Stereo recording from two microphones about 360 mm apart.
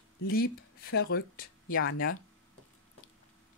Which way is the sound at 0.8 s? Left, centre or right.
Left.